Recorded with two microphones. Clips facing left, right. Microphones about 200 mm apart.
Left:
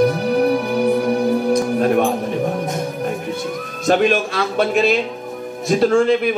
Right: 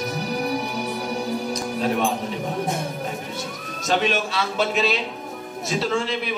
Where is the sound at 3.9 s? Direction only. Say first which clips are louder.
Left 7 dB; 55° left (ahead or behind).